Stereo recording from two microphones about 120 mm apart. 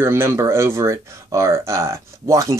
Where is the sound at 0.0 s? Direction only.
20° right (ahead or behind).